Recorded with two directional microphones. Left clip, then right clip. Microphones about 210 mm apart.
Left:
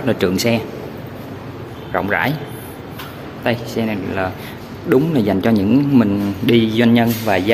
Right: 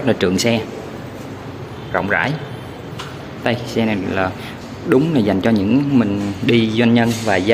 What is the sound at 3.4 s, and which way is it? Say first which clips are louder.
Speech: right 1 dB; 10° right (ahead or behind).